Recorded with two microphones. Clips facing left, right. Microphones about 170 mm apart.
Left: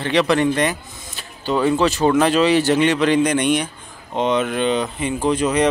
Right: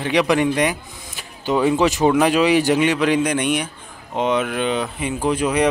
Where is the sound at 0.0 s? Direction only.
10° right (ahead or behind).